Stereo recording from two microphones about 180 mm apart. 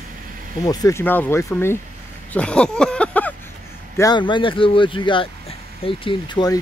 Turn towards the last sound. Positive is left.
turn(degrees=25)  # may be behind; listen again after turning